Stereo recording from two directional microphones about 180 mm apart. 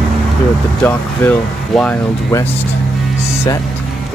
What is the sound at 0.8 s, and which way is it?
Speech, 10° left (ahead or behind).